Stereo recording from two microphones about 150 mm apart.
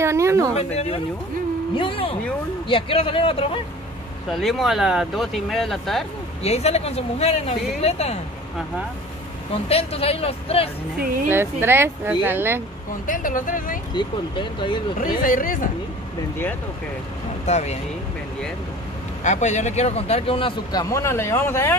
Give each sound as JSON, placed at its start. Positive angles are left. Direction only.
{"t": 0.0, "sound": "a woman's voice", "side_deg": -20}
{"t": 0.6, "sound": "speech", "side_deg": 45}
{"t": 4.3, "sound": "speech", "side_deg": 0}
{"t": 6.4, "sound": "speech", "side_deg": 45}
{"t": 9.7, "sound": "speech", "side_deg": 40}
{"t": 11.2, "sound": "speech", "side_deg": -15}
{"t": 13.0, "sound": "speech", "side_deg": 65}
{"t": 13.9, "sound": "speech", "side_deg": 35}
{"t": 15.2, "sound": "speech", "side_deg": 65}
{"t": 17.5, "sound": "speech", "side_deg": 50}
{"t": 19.2, "sound": "speech", "side_deg": 50}
{"t": 20.9, "sound": "speech", "side_deg": 15}